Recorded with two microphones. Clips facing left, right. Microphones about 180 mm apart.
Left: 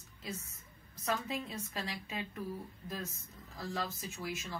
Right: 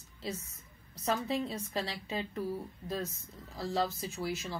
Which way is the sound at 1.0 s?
30° right (ahead or behind).